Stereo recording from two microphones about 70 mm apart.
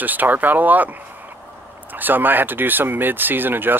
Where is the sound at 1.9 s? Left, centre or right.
Right.